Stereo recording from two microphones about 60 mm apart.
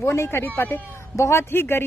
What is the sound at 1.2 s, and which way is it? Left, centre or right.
Speech, left.